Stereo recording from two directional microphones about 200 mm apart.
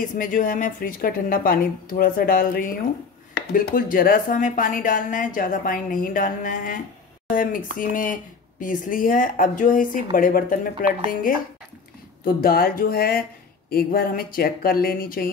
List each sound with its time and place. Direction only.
0.2 s speech: 40° left (ahead or behind)
12.4 s speech: 45° left (ahead or behind)